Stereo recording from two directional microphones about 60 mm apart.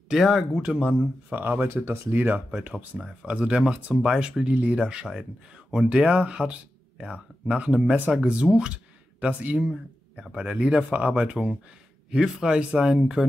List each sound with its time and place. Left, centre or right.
0.1 s speech: centre
0.6 s speech: centre
1.7 s speech: right
2.9 s speech: centre
3.3 s speech: right
8.5 s a sound: centre
9.6 s speech: centre